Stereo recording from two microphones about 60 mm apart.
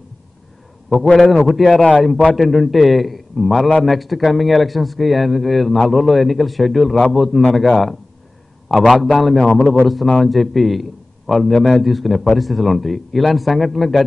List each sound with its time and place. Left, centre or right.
1.0 s a man's voice: centre
1.5 s a man's voice: centre